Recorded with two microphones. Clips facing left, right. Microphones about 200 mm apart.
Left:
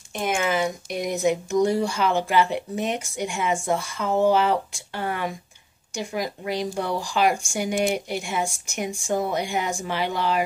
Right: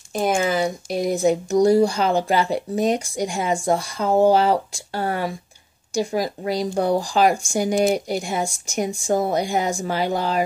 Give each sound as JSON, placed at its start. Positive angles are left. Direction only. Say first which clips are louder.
{"t": 0.1, "sound": "speech", "louder": "right 4 dB", "side_deg": -35}